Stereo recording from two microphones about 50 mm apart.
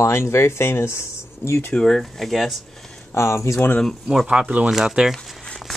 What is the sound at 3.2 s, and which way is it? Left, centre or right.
Speech, left.